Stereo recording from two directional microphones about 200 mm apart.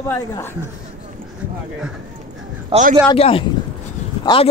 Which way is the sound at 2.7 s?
40° right (ahead or behind).